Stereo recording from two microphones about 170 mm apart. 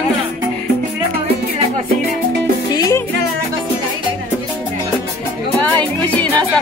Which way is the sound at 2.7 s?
20° left (ahead or behind).